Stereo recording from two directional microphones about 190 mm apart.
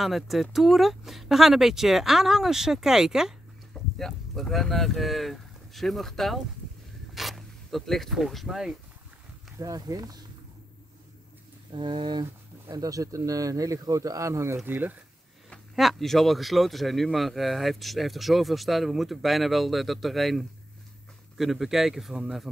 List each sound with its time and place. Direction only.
0.0 s speech: centre (ahead or behind)
9.6 s speech: 20° right (ahead or behind)
11.7 s speech: 25° right (ahead or behind); by 22.5 s centre (ahead or behind)